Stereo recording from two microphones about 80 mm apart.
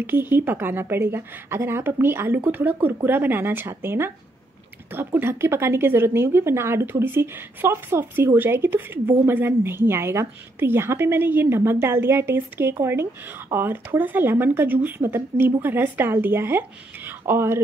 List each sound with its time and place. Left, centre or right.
0.0 s a woman's voice: right